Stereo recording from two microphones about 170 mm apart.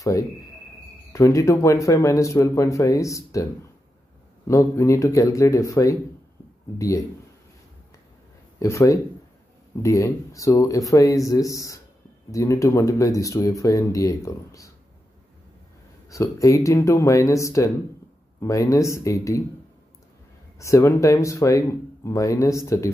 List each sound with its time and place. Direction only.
1.1 s speech: 20° left (ahead or behind)
4.5 s speech: 15° left (ahead or behind)
8.5 s speech: 20° left (ahead or behind)
16.1 s speech: 20° left (ahead or behind)
20.5 s speech: 15° left (ahead or behind)